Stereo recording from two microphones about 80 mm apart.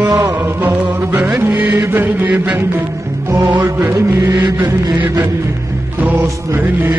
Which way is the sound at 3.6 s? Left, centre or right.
Right.